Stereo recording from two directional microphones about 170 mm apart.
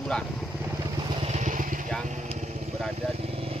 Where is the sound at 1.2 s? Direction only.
40° right (ahead or behind).